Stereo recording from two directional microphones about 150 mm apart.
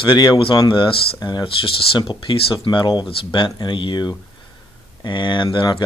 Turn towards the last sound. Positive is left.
turn(degrees=30)  # may be behind; listen again after turning